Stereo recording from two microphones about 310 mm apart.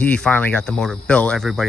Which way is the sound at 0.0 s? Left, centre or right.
Centre.